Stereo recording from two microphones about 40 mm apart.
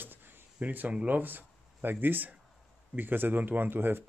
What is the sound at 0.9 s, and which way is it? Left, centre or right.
Speech, right.